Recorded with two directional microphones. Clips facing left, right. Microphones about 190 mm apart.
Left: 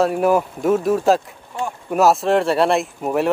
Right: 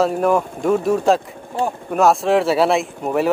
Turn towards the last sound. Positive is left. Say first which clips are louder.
# right 1 dB
turn(degrees=0)  # may be behind; listen again after turning